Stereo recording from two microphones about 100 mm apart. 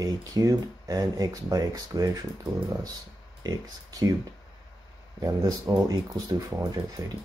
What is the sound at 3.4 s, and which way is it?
Speech, 45° right (ahead or behind).